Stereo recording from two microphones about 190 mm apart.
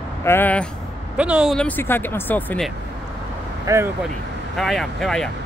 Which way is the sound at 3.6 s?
15° right (ahead or behind).